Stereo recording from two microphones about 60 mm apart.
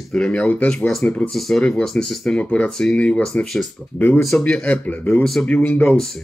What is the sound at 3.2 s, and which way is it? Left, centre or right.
Speech, centre.